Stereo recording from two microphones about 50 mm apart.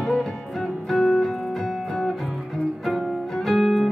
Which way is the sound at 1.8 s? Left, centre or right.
Centre.